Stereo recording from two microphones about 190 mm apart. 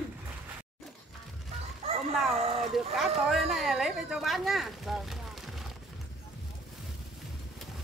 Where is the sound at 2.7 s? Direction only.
Centre (ahead or behind).